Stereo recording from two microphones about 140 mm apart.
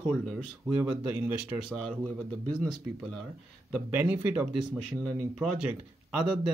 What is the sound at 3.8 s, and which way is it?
Speech, 15° right (ahead or behind).